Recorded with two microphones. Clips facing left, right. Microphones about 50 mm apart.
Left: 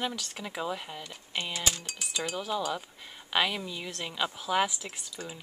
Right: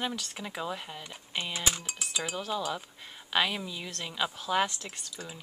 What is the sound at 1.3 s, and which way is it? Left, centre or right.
Speech, centre.